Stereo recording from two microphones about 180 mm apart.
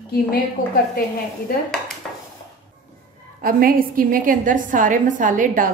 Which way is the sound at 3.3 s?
50° right (ahead or behind).